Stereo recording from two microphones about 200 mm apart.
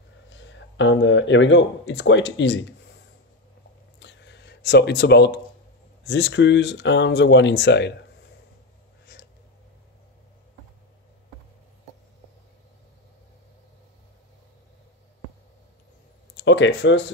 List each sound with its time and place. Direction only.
0.3 s speech: 65° left (ahead or behind)
4.0 s a sound: 65° left (ahead or behind)
6.0 s speech: 60° left (ahead or behind)
16.3 s speech: 65° left (ahead or behind)